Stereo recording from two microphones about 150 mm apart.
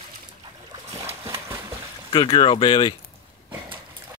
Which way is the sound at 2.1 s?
35° left (ahead or behind).